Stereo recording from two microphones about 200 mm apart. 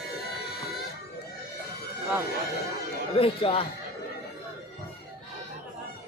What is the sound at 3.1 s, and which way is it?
Speech, 25° left (ahead or behind).